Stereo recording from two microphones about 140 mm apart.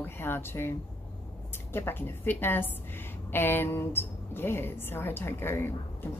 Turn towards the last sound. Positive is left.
turn(degrees=15)  # may be behind; listen again after turning